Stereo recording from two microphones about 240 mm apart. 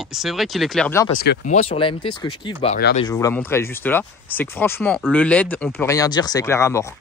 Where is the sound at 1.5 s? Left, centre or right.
Left.